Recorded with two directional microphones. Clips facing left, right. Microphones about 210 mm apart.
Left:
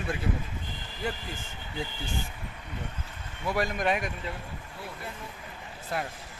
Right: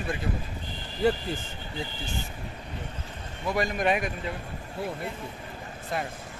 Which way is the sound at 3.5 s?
Centre (ahead or behind).